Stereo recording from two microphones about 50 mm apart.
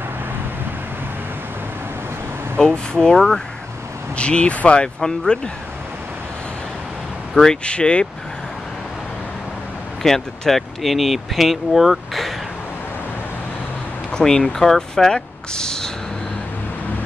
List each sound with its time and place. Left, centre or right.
2.6 s speech: centre
4.2 s speech: left
5.0 s speech: centre
7.4 s speech: centre
10.0 s speech: centre
14.1 s speech: centre